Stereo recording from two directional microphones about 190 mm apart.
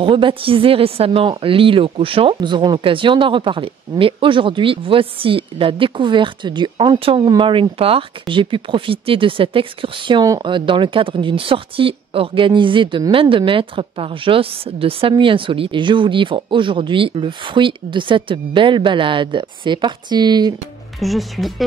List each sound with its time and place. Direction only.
0.0 s a woman's voice: 25° right (ahead or behind)
21.0 s speech: centre (ahead or behind)